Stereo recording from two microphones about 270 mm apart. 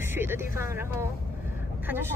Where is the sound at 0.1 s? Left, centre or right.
Centre.